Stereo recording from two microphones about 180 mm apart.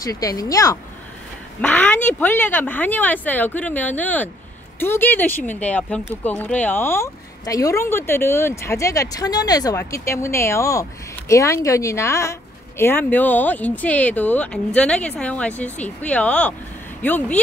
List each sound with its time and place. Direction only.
0.0 s speech: 20° left (ahead or behind)